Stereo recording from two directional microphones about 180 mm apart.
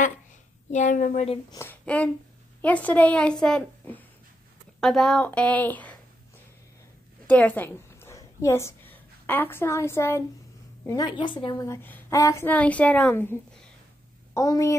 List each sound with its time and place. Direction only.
0.7 s speech: 45° left (ahead or behind)
1.6 s a woman's voice: 10° left (ahead or behind)
7.2 s a woman's voice: 10° left (ahead or behind)